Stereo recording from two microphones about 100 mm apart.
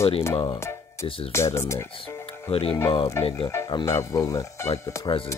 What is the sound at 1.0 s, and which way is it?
Speech, 65° left (ahead or behind).